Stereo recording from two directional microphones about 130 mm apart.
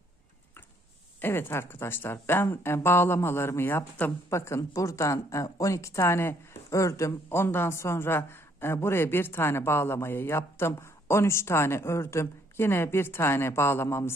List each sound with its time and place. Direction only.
1.2 s a woman's voice: 20° left (ahead or behind)